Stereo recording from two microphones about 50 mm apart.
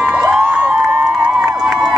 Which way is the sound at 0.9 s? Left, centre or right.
Centre.